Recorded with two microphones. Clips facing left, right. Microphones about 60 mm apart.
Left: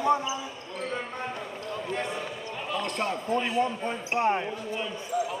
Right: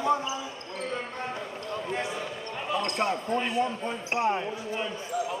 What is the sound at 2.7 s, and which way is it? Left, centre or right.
Speech, centre.